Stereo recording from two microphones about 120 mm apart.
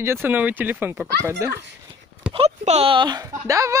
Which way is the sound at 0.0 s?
20° right (ahead or behind).